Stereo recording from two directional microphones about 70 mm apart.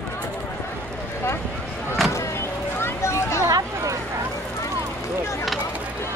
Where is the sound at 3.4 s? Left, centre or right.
Right.